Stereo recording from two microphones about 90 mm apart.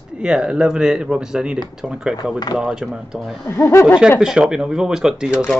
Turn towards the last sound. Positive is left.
turn(degrees=-10)  # may be behind; listen again after turning